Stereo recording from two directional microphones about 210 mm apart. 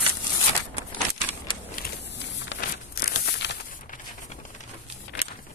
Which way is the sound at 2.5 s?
45° left (ahead or behind).